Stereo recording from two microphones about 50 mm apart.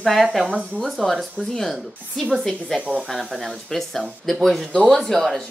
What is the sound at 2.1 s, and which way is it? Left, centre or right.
Speech, centre.